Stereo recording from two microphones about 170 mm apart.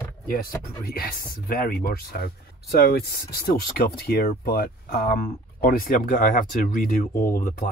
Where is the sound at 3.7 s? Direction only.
65° left (ahead or behind).